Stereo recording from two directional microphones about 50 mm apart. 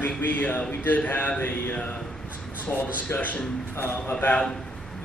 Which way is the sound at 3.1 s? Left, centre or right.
Left.